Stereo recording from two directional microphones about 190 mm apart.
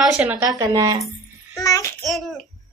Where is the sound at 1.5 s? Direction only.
15° left (ahead or behind).